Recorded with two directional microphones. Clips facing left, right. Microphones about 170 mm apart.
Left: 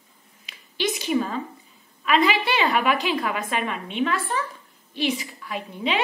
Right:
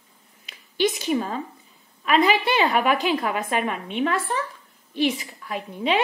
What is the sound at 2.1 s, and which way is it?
A woman's voice, 45° right (ahead or behind).